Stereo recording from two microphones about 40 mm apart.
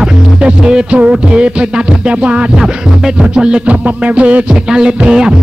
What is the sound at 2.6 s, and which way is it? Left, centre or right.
Music, centre.